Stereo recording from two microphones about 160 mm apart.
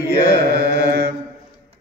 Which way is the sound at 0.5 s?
80° right.